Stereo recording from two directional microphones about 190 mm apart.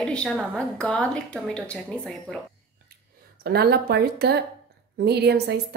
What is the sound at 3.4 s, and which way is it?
A woman's voice, 55° right (ahead or behind).